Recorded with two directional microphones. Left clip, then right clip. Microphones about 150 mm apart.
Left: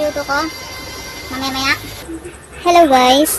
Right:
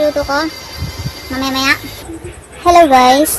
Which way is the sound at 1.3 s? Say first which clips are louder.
Right 4 dB; 35° right (ahead or behind).